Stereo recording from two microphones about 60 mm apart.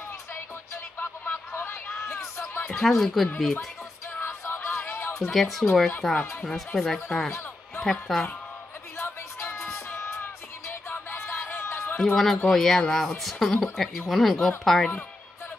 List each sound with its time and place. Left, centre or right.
0.9 s a sound: left
2.0 s music: left
2.7 s speech: centre
4.2 s music: left
4.8 s chatter: left
5.3 s speech: centre
8.9 s music: left
12.0 s speech: centre